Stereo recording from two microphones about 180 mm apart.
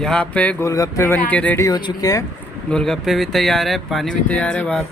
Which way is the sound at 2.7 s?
5° left (ahead or behind).